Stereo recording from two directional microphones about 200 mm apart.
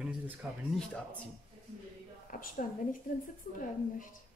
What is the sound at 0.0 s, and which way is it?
Speech, centre (ahead or behind).